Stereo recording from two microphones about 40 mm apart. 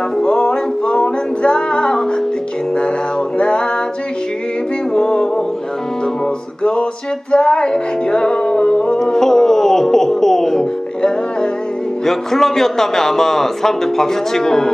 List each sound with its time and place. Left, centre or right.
0.2 s music: centre
3.3 s music: left
4.9 s music: centre
6.6 s music: left; by 10.7 s centre
12.1 s a man's voice: centre